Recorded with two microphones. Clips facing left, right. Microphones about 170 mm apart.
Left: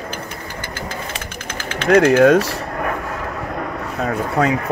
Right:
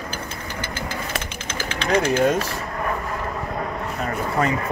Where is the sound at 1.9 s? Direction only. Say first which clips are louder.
Left 8 dB; 65° left (ahead or behind).